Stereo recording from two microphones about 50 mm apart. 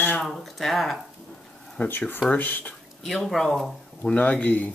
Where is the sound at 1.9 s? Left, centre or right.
Left.